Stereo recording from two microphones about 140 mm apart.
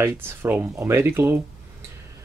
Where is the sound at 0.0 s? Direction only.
15° right (ahead or behind).